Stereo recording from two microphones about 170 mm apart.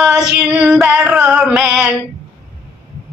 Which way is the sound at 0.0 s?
5° right (ahead or behind).